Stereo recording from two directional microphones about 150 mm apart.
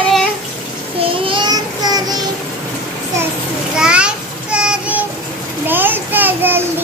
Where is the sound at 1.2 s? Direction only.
30° right (ahead or behind).